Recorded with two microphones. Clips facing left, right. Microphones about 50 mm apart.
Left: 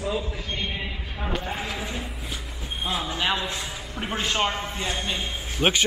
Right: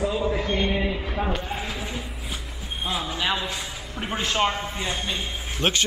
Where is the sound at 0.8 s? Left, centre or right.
Centre.